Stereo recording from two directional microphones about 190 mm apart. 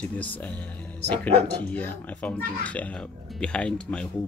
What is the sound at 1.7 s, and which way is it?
Speech, 10° left (ahead or behind).